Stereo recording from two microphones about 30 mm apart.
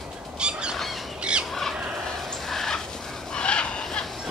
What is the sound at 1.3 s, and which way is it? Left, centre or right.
Squawk, right.